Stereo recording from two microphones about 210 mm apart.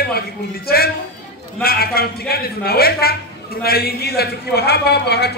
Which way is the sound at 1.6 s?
45° left (ahead or behind).